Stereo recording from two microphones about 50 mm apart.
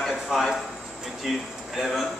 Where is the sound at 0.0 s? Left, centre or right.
Centre.